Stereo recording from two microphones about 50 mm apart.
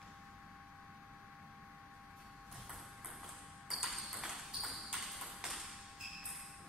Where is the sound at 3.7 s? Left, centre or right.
Centre.